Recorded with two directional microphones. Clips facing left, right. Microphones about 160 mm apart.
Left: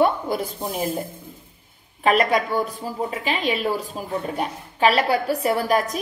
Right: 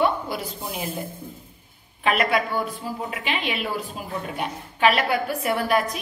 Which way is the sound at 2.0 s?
40° left (ahead or behind).